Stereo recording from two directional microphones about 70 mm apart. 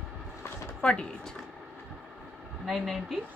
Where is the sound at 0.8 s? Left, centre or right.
Centre.